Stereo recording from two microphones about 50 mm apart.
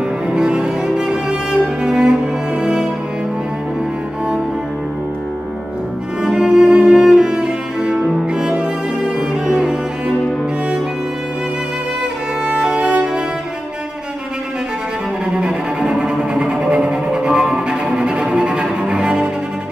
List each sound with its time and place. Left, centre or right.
0.3 s cello: centre
6.2 s music: centre
8.3 s cello: centre
12.4 s music: centre
15.3 s cello: centre